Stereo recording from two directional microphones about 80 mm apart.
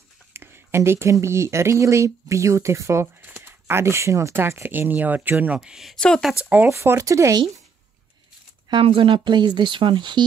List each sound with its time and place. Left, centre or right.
0.3 s speech: right
5.6 s speech: centre
5.9 s speech: centre
6.7 s speech: right
8.6 s speech: right